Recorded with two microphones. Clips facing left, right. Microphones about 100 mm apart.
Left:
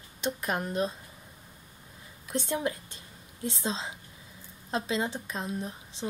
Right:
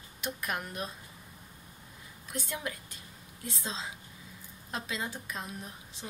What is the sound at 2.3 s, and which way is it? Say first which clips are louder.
A woman's voice: left 7 dB; 30° left (ahead or behind).